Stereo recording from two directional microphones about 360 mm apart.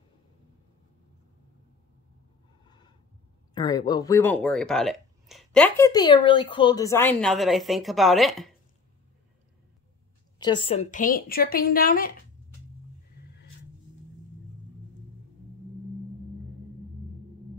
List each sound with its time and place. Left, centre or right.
3.5 s speech: centre
10.4 s a woman's voice: centre